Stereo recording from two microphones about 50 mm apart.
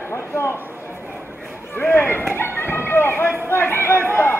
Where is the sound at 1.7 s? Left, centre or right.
Left.